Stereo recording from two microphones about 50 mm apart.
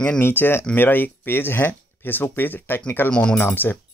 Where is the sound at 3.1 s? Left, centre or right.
Centre.